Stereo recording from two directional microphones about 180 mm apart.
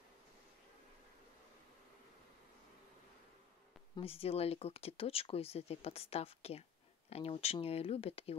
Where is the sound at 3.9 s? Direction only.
30° left (ahead or behind).